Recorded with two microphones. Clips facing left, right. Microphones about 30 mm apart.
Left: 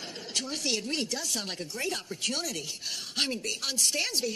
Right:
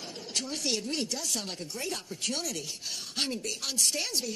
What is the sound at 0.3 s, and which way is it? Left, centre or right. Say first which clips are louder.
A woman's voice: left 1 dB; centre.